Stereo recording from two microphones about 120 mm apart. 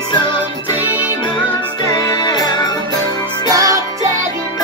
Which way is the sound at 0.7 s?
15° right (ahead or behind).